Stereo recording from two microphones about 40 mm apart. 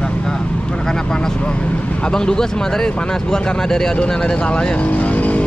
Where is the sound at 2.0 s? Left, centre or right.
Centre.